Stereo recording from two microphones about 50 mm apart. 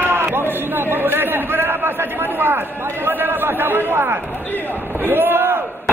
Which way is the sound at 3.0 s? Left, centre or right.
Right.